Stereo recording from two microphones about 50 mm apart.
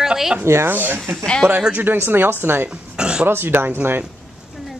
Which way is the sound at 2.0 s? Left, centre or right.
Right.